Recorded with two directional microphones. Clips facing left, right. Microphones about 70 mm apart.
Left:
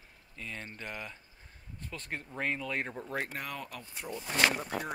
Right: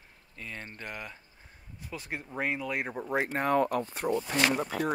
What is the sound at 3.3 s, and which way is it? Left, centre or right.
Speech, right.